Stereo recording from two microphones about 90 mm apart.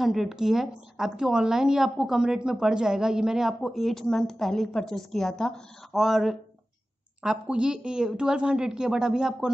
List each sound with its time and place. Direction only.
0.0 s a woman's voice: 5° right (ahead or behind)